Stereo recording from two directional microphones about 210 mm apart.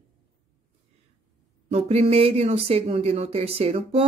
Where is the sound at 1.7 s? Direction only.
30° right (ahead or behind).